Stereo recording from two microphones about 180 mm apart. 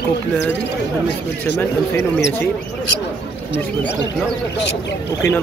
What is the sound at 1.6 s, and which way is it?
Speech, 15° left (ahead or behind).